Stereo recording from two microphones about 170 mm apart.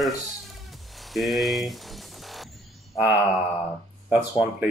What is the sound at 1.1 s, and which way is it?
Music, centre (ahead or behind).